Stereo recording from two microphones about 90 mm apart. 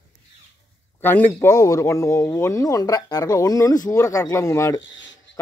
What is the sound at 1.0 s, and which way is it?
Speech, 20° left (ahead or behind).